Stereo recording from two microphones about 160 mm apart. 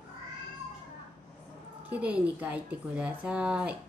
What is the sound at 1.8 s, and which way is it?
A woman's voice, 10° right (ahead or behind).